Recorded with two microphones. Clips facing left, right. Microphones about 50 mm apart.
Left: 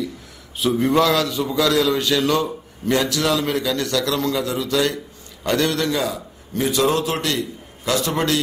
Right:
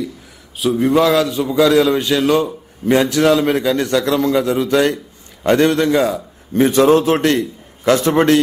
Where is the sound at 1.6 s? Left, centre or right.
Right.